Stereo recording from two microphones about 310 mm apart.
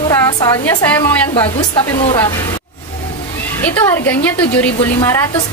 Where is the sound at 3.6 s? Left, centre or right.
Centre.